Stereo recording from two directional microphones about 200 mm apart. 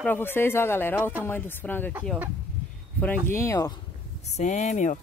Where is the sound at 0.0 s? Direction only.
10° left (ahead or behind).